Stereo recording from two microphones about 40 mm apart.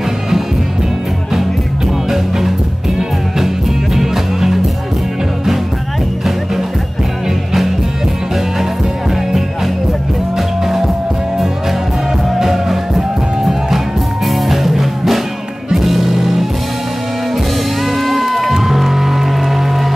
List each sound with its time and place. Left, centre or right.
2.0 s music: centre
7.2 s music: centre
9.1 s music: centre
12.4 s music: centre
17.8 s music: centre